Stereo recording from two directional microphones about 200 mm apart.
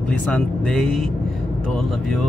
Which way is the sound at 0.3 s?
5° left (ahead or behind).